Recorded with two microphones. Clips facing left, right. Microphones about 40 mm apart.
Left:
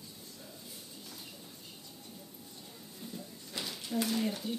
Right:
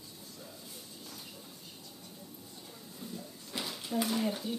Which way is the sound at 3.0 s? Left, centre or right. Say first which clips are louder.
Right 1 dB; centre.